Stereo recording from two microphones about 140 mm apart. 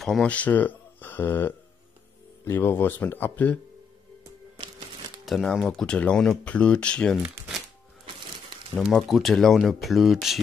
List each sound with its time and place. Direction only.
0.0 s speech: 5° left (ahead or behind)
5.2 s speech: centre (ahead or behind)
8.7 s speech: centre (ahead or behind)